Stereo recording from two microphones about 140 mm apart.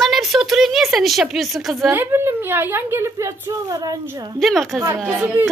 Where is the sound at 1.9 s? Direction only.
15° right (ahead or behind).